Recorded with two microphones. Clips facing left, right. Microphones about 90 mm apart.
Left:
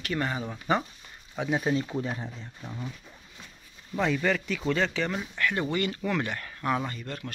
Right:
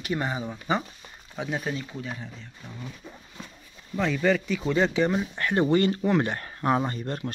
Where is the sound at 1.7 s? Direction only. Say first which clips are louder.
Left 6 dB; 30° left (ahead or behind).